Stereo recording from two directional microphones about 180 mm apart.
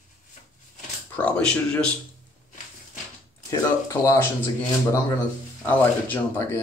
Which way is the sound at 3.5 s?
15° left (ahead or behind).